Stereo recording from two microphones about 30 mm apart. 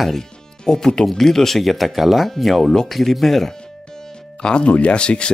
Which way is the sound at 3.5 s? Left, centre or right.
Centre.